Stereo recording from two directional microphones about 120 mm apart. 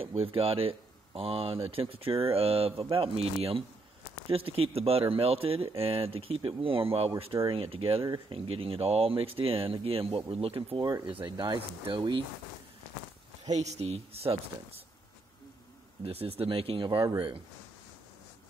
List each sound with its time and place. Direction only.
0.0 s speech: 50° right (ahead or behind)
10.8 s speech: 40° right (ahead or behind)
13.5 s speech: 70° right (ahead or behind)
16.0 s speech: 55° right (ahead or behind)